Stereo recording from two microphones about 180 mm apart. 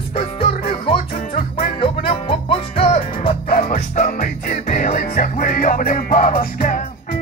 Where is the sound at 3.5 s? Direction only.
50° left (ahead or behind).